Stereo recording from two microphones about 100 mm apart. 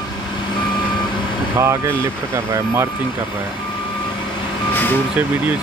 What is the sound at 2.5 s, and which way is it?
Speech, 30° right (ahead or behind).